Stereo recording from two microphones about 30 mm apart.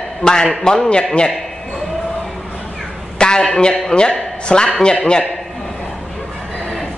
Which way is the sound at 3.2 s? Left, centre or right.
Left.